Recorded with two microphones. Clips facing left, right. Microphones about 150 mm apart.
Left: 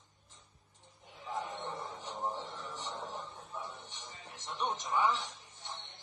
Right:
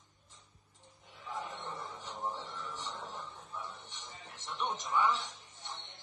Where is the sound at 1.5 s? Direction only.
20° left (ahead or behind).